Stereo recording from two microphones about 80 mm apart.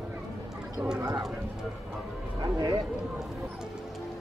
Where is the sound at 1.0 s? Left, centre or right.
Right.